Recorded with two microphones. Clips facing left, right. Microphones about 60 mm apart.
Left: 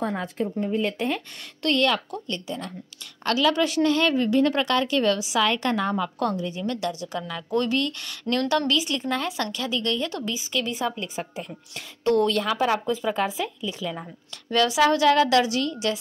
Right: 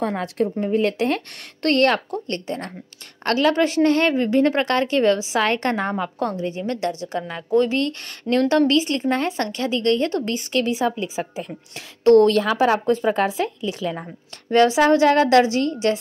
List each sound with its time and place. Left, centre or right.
0.0 s speech: right
0.7 s speech: right
1.6 s a woman's voice: right
10.3 s speech: right
12.0 s a woman's voice: right
12.6 s a woman's voice: right
14.5 s a woman's voice: right